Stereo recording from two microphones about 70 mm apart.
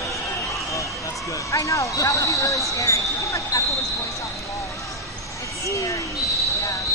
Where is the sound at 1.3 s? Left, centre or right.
Left.